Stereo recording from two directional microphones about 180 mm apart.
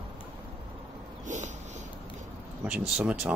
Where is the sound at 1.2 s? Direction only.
40° right (ahead or behind).